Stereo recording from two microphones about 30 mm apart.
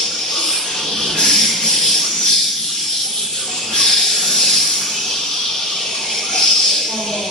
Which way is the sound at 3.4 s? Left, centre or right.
Centre.